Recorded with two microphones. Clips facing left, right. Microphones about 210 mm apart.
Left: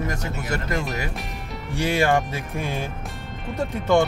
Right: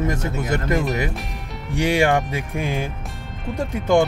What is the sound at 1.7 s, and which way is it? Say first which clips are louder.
Speech: right 2 dB; 15° right (ahead or behind).